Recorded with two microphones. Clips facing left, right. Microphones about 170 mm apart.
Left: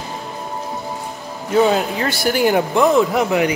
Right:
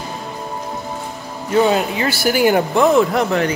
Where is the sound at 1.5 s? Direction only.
Centre (ahead or behind).